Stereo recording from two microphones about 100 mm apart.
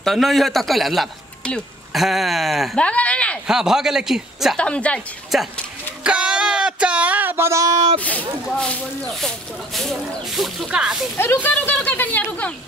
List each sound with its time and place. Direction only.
0.0 s speech: centre (ahead or behind)
1.9 s speech: centre (ahead or behind)
2.8 s speech: 10° left (ahead or behind)
3.4 s speech: 5° right (ahead or behind)
4.6 s speech: 10° left (ahead or behind)
5.3 s speech: centre (ahead or behind)
6.0 s a sound: 10° right (ahead or behind); by 7.8 s 35° right (ahead or behind)
8.5 s speech: 10° left (ahead or behind)
11.1 s speech: 20° left (ahead or behind)